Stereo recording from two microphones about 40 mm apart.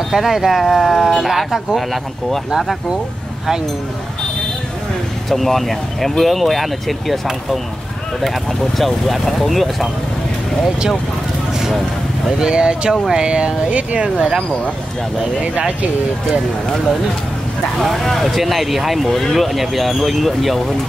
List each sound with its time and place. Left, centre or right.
0.1 s speech: centre
5.3 s speech: centre
8.2 s speech: centre
11.5 s vehicle: centre
12.4 s speech: right
15.4 s speech: right
17.9 s speech: centre